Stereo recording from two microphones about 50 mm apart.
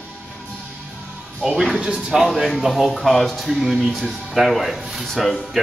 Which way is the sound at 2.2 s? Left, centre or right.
Centre.